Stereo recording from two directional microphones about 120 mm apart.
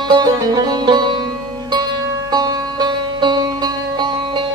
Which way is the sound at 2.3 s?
35° right (ahead or behind).